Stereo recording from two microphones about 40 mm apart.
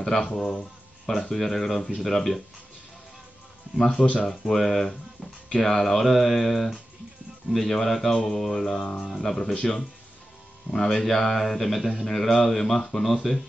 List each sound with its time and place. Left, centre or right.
0.0 s speech: centre
1.3 s speech: centre
3.7 s speech: centre
4.0 s speech: left
4.3 s speech: centre
4.8 s speech: centre
5.6 s speech: centre
8.1 s speech: centre
8.4 s speech: centre
10.7 s speech: centre